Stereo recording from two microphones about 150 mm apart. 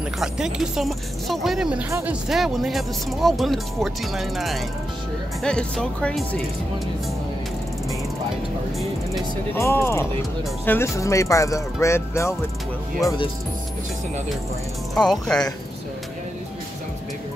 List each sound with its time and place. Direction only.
0.2 s speech: 5° right (ahead or behind)
1.9 s speech: 20° right (ahead or behind)
2.2 s speech: centre (ahead or behind)
9.6 s speech: 15° left (ahead or behind)
15.0 s speech: 5° left (ahead or behind)